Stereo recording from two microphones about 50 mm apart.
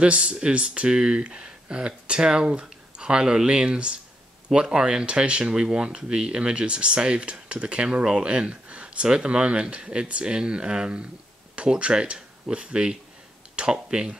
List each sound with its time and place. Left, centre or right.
0.0 s speech: centre